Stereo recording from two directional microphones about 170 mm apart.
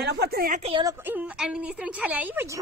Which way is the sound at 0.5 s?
35° right (ahead or behind).